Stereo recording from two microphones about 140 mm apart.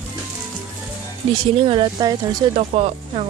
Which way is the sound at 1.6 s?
30° right (ahead or behind).